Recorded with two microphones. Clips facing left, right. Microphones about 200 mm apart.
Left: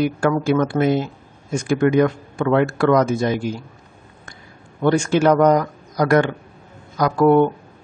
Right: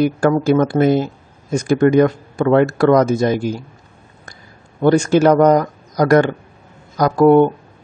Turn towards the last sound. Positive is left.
turn(degrees=-40)  # may be behind; listen again after turning